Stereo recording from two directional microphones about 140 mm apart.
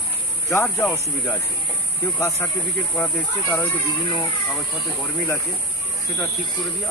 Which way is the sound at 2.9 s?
10° left (ahead or behind).